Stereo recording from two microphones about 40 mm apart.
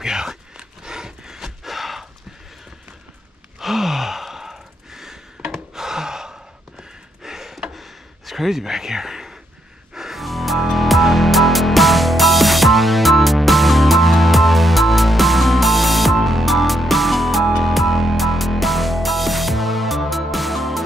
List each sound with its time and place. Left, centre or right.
0.0 s battle cry: centre
3.5 s sigh: centre
5.8 s gasp: centre
7.7 s a sound: centre
9.9 s music: centre